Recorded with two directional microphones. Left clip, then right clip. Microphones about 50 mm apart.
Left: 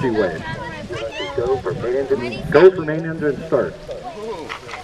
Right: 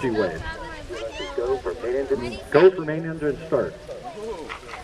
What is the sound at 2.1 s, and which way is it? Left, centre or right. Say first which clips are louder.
Speech: left 4 dB; left.